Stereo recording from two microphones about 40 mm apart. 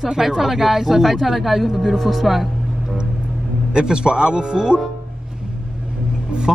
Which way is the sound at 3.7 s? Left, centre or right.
Right.